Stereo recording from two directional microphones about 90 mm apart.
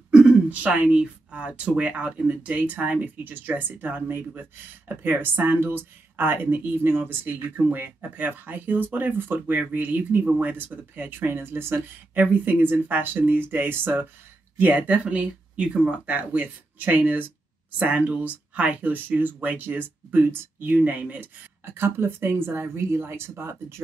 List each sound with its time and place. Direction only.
0.1 s speech: 10° right (ahead or behind); by 23.5 s 25° right (ahead or behind)